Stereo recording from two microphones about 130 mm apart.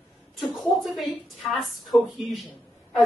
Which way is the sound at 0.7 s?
Centre (ahead or behind).